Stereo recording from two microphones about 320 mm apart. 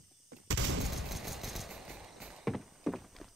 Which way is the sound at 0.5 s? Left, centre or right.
Right.